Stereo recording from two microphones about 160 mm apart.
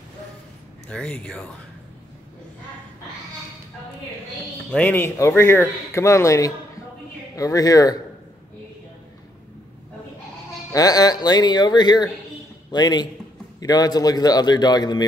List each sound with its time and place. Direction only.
0.8 s speech: 5° left (ahead or behind)
4.6 s a man's voice: 10° left (ahead or behind)
10.7 s a man's voice: 25° left (ahead or behind)